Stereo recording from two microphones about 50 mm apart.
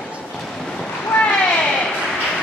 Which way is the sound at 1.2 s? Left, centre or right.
Centre.